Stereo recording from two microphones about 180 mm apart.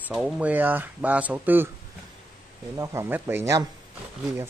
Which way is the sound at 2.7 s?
15° right (ahead or behind).